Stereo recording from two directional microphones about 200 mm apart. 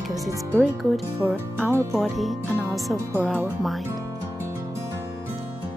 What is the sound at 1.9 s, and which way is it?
Speech, centre (ahead or behind).